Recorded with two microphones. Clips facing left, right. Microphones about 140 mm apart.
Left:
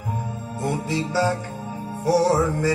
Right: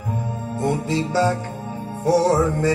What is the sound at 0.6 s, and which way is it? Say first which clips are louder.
Music: right 3 dB; 20° right (ahead or behind).